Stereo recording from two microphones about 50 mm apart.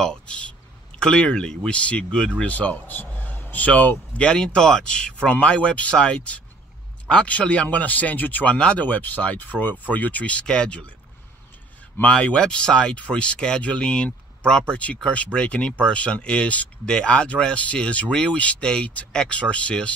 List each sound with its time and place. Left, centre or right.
0.9 s speech: centre
4.2 s speech: centre
10.4 s speech: centre
12.0 s speech: left
12.4 s speech: centre